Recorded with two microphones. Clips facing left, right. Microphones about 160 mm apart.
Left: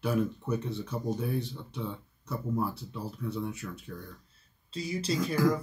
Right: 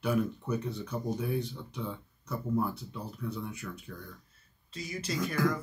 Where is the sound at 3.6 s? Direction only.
15° left (ahead or behind).